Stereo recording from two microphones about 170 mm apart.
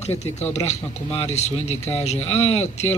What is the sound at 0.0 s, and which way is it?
Speech, 40° left (ahead or behind).